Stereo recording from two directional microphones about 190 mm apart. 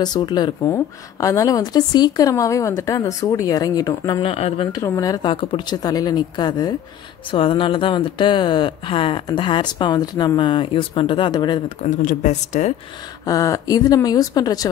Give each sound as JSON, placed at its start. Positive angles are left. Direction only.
{"t": 0.0, "sound": "speech", "side_deg": 20}
{"t": 4.3, "sound": "speech", "side_deg": 30}
{"t": 4.7, "sound": "speech", "side_deg": 20}
{"t": 11.8, "sound": "speech", "side_deg": 40}
{"t": 13.2, "sound": "speech", "side_deg": 15}